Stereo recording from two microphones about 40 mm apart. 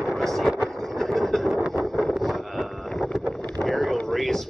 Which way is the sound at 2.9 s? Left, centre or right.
Centre.